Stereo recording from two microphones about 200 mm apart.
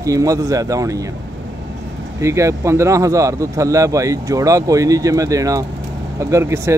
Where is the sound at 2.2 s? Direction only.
15° right (ahead or behind).